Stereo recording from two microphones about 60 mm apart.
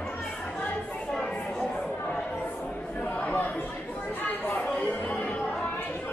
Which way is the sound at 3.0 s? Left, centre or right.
Left.